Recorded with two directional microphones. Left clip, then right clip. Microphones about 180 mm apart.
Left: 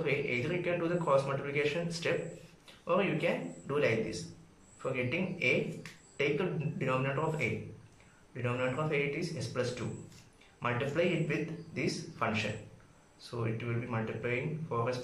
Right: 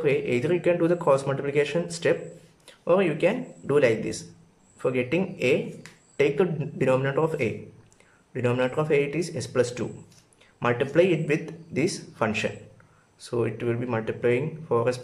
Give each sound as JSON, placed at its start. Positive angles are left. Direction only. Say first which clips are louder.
{"t": 0.0, "sound": "a man's voice", "louder": "right 9 dB", "side_deg": -45}